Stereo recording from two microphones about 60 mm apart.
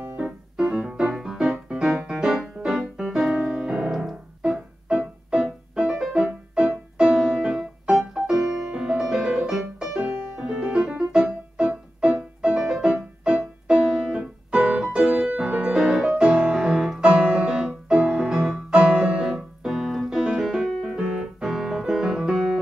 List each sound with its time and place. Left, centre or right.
0.6 s music: centre
19.2 s keyboard: centre
22.2 s music: centre